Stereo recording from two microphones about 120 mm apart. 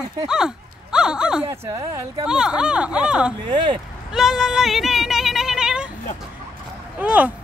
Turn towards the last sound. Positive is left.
turn(degrees=-10)  # may be behind; listen again after turning